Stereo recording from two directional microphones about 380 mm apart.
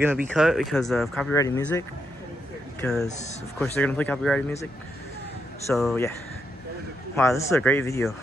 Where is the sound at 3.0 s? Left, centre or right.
Centre.